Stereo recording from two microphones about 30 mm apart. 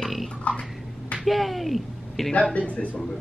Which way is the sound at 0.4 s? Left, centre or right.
Left.